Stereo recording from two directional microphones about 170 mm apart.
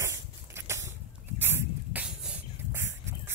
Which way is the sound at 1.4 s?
15° right (ahead or behind).